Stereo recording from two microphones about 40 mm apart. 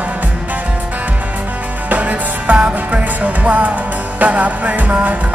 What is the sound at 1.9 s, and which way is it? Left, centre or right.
Music, right.